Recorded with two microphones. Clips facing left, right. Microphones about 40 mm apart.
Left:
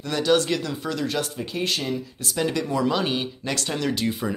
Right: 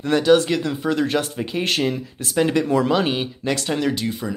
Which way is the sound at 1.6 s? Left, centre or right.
Right.